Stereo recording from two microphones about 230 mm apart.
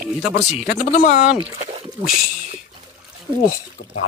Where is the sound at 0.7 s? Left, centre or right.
Left.